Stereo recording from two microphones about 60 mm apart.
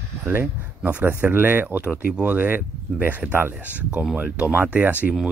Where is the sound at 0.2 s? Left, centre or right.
Right.